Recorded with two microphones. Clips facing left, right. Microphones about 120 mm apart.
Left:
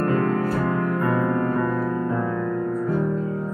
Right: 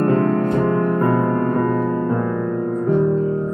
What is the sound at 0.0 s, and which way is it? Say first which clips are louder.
Music: right 5 dB; 30° right (ahead or behind).